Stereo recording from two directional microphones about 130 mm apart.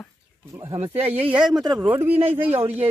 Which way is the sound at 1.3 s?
5° right (ahead or behind).